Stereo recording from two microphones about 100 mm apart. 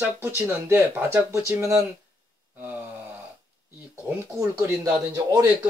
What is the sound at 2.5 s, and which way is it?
Gasp, 20° right (ahead or behind).